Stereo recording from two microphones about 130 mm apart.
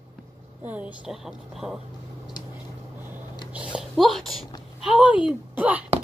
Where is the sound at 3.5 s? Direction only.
10° right (ahead or behind).